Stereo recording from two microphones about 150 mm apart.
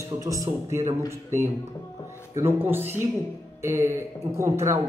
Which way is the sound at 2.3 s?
15° right (ahead or behind).